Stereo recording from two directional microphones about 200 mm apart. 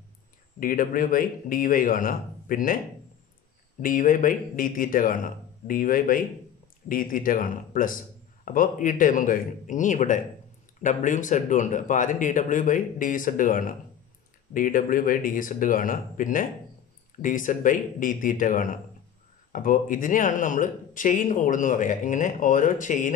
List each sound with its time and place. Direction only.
0.6 s a man's voice: 45° left (ahead or behind)
3.8 s a man's voice: 40° left (ahead or behind)